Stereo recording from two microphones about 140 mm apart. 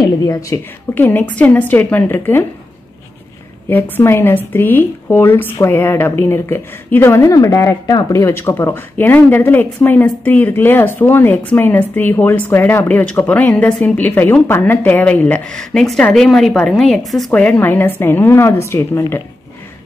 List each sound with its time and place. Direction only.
0.0 s speech: 25° left (ahead or behind)
3.6 s speech: 15° left (ahead or behind)